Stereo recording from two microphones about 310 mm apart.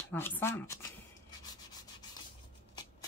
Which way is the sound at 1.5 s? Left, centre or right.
Centre.